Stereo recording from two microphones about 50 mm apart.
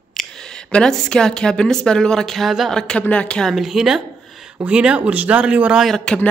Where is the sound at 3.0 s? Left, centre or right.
Left.